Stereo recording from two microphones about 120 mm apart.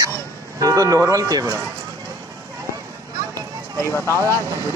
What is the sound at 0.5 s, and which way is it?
Speech, 30° right (ahead or behind).